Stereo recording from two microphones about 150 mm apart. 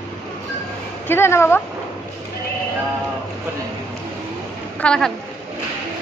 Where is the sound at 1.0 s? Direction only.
15° left (ahead or behind).